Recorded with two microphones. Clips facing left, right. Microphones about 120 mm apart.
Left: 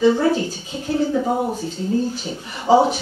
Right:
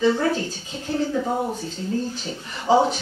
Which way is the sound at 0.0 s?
10° left (ahead or behind).